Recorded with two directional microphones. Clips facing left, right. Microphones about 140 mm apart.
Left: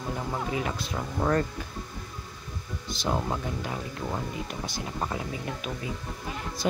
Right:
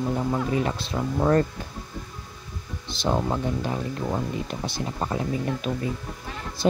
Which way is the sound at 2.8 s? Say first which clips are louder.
Right 4 dB; 30° right (ahead or behind).